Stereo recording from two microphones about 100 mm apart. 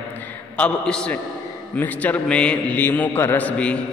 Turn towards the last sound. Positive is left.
turn(degrees=15)  # may be behind; listen again after turning